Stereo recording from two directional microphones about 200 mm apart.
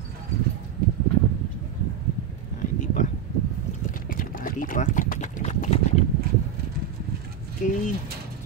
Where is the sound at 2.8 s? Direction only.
40° left (ahead or behind).